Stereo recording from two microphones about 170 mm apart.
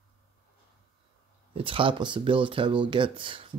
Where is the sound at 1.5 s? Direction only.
30° right (ahead or behind).